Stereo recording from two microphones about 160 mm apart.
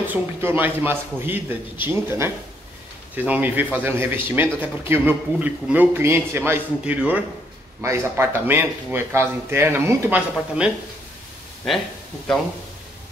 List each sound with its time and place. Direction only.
0.0 s speech: 10° right (ahead or behind)